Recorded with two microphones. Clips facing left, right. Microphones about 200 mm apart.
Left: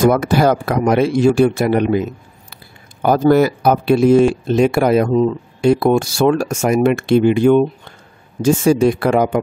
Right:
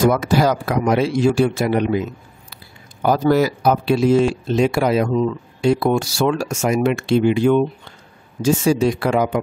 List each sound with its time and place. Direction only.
0.0 s a man's voice: 55° left (ahead or behind)